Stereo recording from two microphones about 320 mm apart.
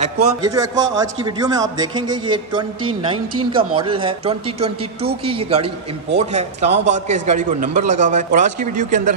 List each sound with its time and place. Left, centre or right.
0.4 s a man's voice: centre